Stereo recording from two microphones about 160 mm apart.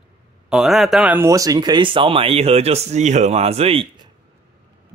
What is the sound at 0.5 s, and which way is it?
Speech, centre (ahead or behind).